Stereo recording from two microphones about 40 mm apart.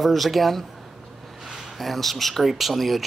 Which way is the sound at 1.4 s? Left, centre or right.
Centre.